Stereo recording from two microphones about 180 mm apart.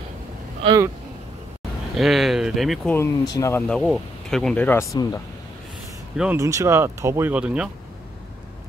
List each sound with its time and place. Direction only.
2.0 s speech: centre (ahead or behind)
2.9 s speech: 15° left (ahead or behind)
3.6 s speech: 5° left (ahead or behind)
6.1 s speech: 10° right (ahead or behind)